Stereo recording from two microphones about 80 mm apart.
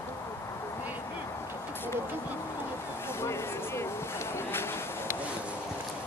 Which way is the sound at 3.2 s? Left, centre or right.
Left.